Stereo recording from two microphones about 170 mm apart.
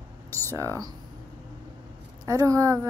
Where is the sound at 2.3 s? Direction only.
20° right (ahead or behind).